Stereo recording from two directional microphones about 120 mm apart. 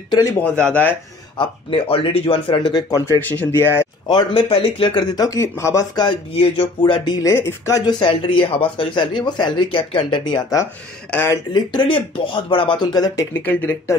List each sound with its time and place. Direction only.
0.4 s speech: 10° left (ahead or behind)
1.4 s speech: 45° left (ahead or behind)
3.1 s speech: 15° left (ahead or behind)
4.1 s speech: 35° left (ahead or behind)
4.5 s speech: 50° left (ahead or behind)
5.1 s speech: 30° left (ahead or behind)
8.0 s speech: 45° left (ahead or behind)
11.1 s speech: 15° left (ahead or behind)
11.5 s speech: 40° left (ahead or behind)
13.3 s speech: 15° left (ahead or behind)